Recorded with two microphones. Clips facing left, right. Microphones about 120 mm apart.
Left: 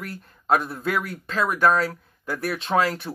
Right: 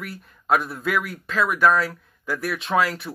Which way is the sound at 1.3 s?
30° left (ahead or behind).